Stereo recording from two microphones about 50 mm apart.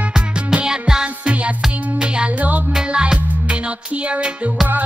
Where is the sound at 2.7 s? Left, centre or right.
Centre.